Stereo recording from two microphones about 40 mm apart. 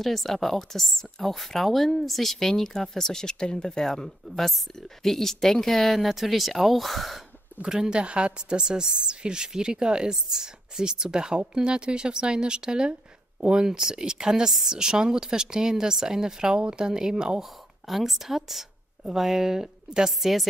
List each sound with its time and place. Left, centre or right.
0.0 s a woman's voice: centre
7.6 s speech: centre
7.9 s speech: right
17.4 s speech: centre
20.2 s a woman's voice: centre